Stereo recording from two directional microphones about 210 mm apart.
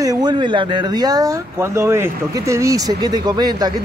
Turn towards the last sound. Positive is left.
turn(degrees=-20)  # may be behind; listen again after turning